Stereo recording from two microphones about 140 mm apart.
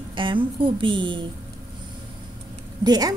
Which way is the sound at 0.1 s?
35° right (ahead or behind).